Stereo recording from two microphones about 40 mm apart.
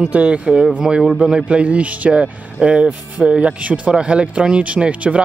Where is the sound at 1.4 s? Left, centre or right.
Right.